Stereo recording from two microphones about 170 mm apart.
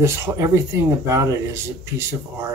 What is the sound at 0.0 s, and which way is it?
Speech, 15° right (ahead or behind).